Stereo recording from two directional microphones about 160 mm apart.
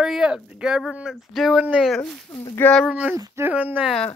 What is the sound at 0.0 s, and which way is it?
Speech, 5° right (ahead or behind).